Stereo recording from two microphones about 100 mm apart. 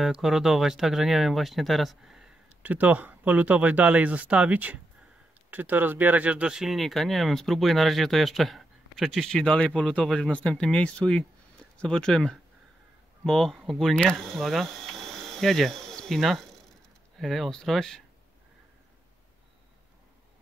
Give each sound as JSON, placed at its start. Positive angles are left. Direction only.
{"t": 0.0, "sound": "speech", "side_deg": -5}
{"t": 2.6, "sound": "speech", "side_deg": -15}